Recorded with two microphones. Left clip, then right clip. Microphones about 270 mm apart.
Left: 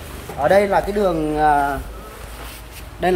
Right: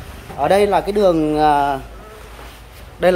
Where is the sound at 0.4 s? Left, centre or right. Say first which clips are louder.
Right 1 dB; right.